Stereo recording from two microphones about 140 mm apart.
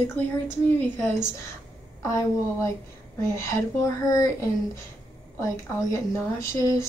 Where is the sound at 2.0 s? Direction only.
20° left (ahead or behind).